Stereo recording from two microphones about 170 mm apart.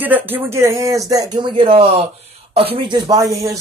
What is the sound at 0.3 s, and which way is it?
Speech, 15° right (ahead or behind).